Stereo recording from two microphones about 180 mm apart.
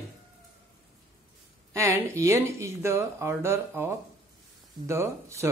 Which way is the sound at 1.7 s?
15° right (ahead or behind).